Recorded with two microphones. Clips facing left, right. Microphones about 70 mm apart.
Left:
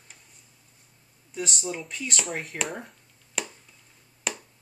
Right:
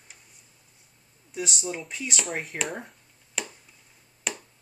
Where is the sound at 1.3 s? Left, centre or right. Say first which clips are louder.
Even; centre.